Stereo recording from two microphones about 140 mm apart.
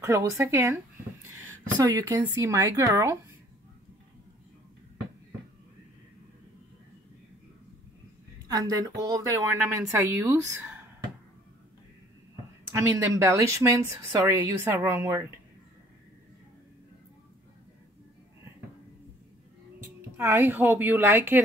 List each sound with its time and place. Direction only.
0.0 s speech: 20° right (ahead or behind)
1.8 s speech: 25° right (ahead or behind)
8.5 s a woman's voice: 25° right (ahead or behind)
12.7 s speech: 20° right (ahead or behind)
20.2 s a woman's voice: 15° right (ahead or behind)